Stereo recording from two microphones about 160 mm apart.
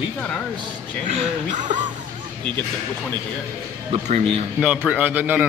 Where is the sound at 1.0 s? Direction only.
50° right (ahead or behind).